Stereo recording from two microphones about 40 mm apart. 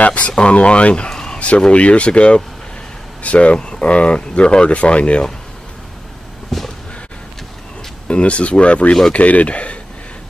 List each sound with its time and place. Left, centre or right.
0.0 s speech: left
1.1 s a sound: centre
1.7 s speech: left
3.5 s speech: left
6.5 s a sound: centre
8.1 s speech: left